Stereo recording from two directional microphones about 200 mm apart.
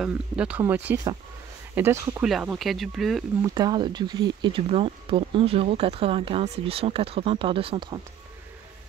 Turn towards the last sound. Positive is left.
turn(degrees=-25)  # may be behind; listen again after turning